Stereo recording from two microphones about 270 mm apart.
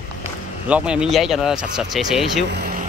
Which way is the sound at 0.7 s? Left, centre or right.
Centre.